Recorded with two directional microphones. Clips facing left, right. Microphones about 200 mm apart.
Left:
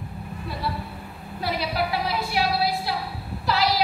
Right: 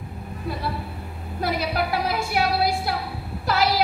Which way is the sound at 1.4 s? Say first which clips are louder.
Right 2 dB; 50° right (ahead or behind).